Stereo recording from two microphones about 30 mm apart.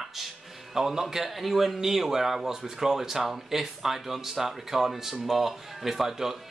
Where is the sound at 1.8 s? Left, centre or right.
Centre.